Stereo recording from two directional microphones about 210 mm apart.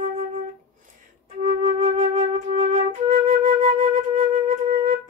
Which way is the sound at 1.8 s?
35° right (ahead or behind).